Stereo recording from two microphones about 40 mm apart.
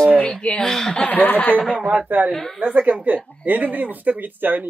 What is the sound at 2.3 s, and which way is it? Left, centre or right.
Speech, centre.